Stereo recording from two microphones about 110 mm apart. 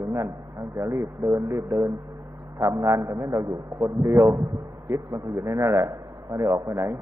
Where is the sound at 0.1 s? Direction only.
25° right (ahead or behind).